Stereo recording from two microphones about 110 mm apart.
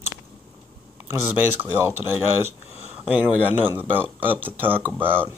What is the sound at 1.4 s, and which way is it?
Speech, 20° right (ahead or behind).